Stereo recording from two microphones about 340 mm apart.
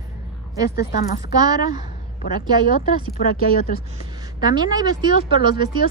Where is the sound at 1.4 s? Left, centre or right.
Centre.